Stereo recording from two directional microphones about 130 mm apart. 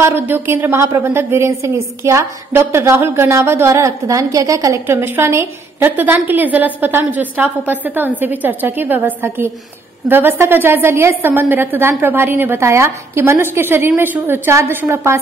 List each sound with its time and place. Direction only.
0.0 s a woman's voice: 15° right (ahead or behind)